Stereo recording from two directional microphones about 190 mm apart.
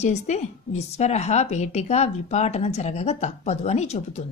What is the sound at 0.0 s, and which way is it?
Speech, 35° left (ahead or behind).